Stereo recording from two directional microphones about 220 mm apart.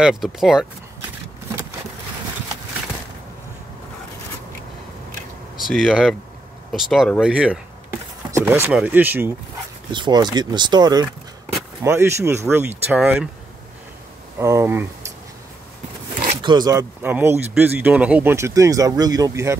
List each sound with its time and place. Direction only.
0.0 s speech: centre (ahead or behind)
5.6 s speech: centre (ahead or behind)
9.9 s speech: 20° right (ahead or behind)
14.4 s speech: 10° right (ahead or behind)
16.4 s speech: 20° right (ahead or behind)